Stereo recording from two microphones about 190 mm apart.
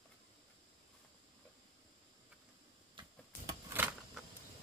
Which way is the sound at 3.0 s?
25° right (ahead or behind).